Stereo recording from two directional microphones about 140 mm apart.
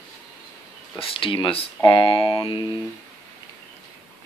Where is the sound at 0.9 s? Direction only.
40° left (ahead or behind).